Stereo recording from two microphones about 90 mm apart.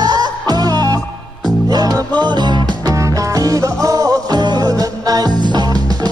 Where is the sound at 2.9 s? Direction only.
40° right (ahead or behind).